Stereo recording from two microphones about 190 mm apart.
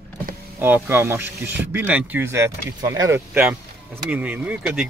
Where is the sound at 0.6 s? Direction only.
10° right (ahead or behind).